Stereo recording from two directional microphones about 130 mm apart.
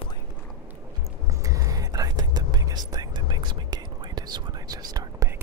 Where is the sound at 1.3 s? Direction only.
25° right (ahead or behind).